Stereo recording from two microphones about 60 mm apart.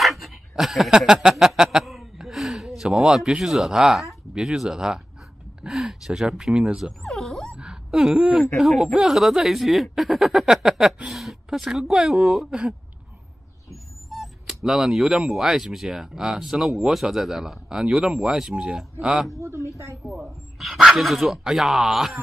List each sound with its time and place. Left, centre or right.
0.0 s dog: centre
1.3 s a sound: centre
3.2 s speech: centre
7.0 s dog: centre
7.5 s speech: centre
14.1 s speech: centre